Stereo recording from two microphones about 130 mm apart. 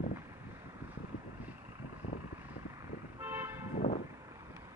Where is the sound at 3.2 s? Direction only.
15° right (ahead or behind).